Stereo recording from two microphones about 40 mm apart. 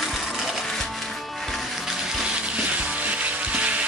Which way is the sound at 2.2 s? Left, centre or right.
Right.